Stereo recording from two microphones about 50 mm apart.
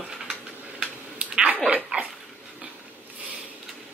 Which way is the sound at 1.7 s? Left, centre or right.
Right.